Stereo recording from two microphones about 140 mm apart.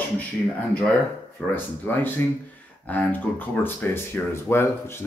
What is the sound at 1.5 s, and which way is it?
Speech, 15° left (ahead or behind).